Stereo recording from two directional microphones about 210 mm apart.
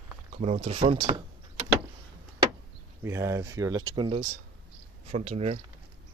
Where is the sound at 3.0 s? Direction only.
15° right (ahead or behind).